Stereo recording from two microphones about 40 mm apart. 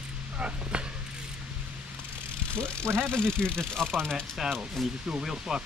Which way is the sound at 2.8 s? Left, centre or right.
Right.